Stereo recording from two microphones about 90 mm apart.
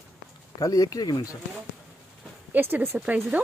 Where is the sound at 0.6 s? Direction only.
40° left (ahead or behind).